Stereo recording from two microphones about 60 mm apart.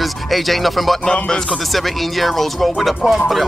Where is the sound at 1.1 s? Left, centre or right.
Centre.